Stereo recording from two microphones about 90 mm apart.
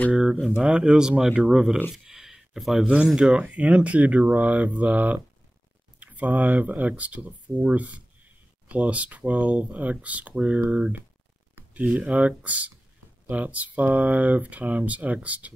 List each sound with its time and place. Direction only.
0.1 s speech: 10° right (ahead or behind)
1.9 s a sound: 5° right (ahead or behind)
2.9 s speech: 10° right (ahead or behind)